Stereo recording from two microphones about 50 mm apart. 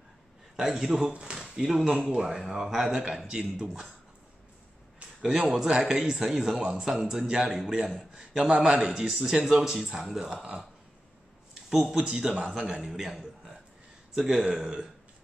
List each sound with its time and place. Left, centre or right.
0.6 s a man's voice: centre
5.2 s a man's voice: centre
11.7 s a man's voice: centre
14.2 s a man's voice: right